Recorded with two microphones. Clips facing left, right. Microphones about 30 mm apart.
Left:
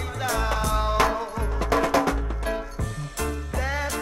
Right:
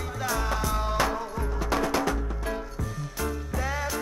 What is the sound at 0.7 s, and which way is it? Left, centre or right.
Music, left.